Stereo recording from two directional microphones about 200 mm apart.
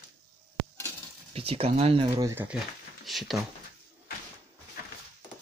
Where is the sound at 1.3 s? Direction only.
30° right (ahead or behind).